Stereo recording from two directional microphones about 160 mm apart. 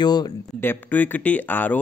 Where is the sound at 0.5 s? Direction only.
10° left (ahead or behind).